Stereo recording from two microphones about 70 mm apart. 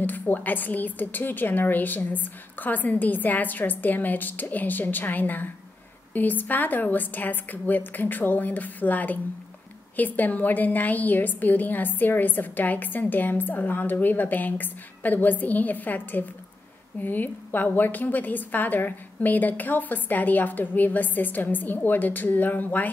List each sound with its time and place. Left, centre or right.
0.0 s a woman's voice: left